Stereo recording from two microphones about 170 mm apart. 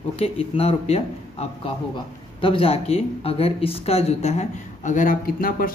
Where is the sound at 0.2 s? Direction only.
35° left (ahead or behind).